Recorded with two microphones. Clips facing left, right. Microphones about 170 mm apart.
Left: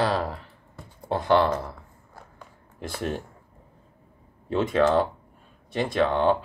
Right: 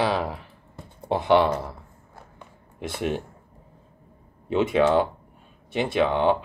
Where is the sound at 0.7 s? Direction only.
20° right (ahead or behind).